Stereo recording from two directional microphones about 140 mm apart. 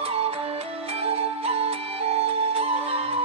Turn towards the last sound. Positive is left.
turn(degrees=-45)  # may be behind; listen again after turning